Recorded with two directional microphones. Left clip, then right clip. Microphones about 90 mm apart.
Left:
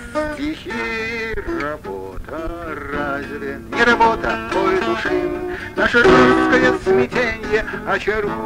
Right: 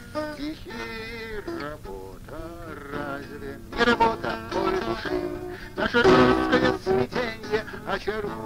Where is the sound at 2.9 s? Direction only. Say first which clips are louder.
Left 9 dB; 35° right (ahead or behind).